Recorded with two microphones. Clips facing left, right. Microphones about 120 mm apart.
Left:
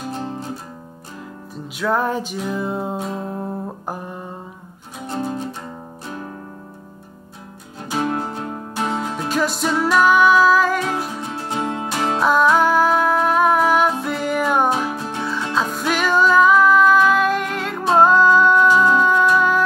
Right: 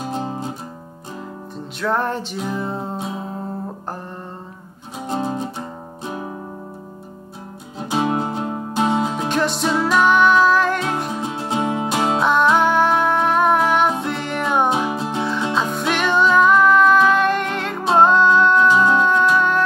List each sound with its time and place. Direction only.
0.1 s music: 15° right (ahead or behind)
1.8 s music: 5° left (ahead or behind)
3.0 s music: 10° right (ahead or behind)
5.0 s music: 20° right (ahead or behind)
7.9 s music: 20° right (ahead or behind)
9.3 s music: centre (ahead or behind)
11.1 s music: 20° right (ahead or behind)
12.2 s music: centre (ahead or behind)
14.7 s music: 15° right (ahead or behind)
15.5 s music: centre (ahead or behind)